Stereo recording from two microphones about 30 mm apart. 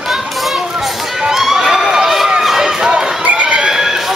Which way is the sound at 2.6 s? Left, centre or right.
Right.